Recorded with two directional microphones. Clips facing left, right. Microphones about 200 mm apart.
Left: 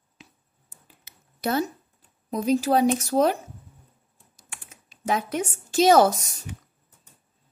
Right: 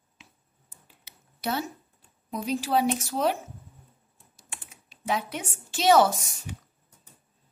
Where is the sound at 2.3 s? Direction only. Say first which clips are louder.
Left 7 dB; 40° left (ahead or behind).